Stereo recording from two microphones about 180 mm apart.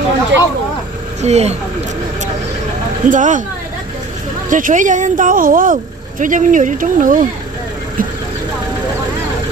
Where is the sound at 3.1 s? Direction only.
45° right (ahead or behind).